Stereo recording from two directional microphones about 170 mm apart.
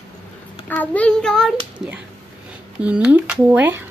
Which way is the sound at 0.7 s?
10° left (ahead or behind).